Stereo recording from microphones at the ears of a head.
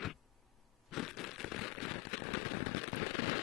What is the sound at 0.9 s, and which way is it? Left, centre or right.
Fireworks, left.